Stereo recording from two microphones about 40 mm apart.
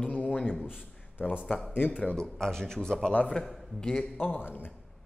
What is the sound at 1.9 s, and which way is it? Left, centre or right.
Speech, left.